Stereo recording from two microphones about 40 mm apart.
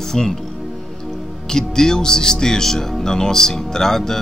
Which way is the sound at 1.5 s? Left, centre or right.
Centre.